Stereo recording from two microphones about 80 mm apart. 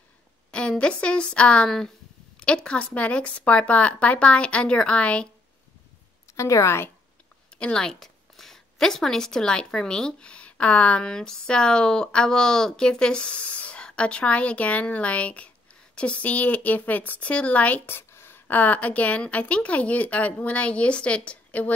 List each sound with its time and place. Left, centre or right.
0.5 s a woman's voice: centre
6.3 s a woman's voice: left
7.5 s a woman's voice: centre